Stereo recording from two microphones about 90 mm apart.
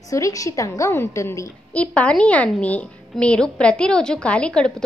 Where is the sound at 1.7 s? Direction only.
15° left (ahead or behind).